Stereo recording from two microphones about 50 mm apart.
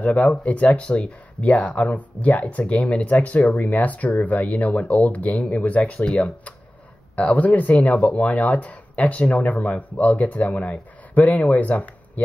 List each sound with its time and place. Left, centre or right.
0.0 s speech: left